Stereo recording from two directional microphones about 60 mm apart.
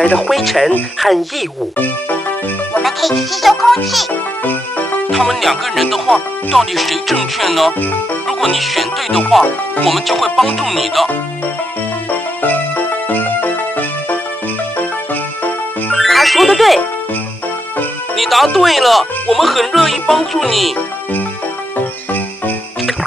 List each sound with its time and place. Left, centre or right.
0.3 s music: centre
2.8 s music: centre
5.1 s music: centre
12.4 s music: left
16.0 s speech: centre
18.1 s music: centre